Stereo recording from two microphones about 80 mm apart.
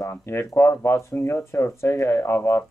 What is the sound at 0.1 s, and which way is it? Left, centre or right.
Speech, left.